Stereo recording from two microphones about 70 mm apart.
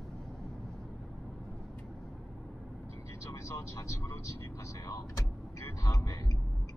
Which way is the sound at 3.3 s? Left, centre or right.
Left.